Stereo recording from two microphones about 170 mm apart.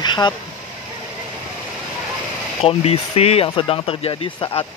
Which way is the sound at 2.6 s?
35° left (ahead or behind).